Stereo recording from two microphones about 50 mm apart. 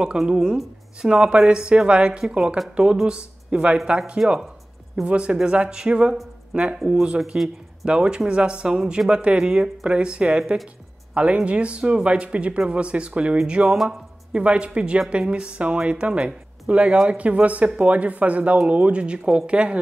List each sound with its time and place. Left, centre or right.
0.3 s a woman's voice: centre
5.0 s a woman's voice: right
10.2 s speech: centre
11.1 s a woman's voice: right